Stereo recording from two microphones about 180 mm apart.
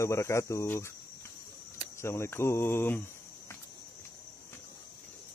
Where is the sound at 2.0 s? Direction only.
15° left (ahead or behind).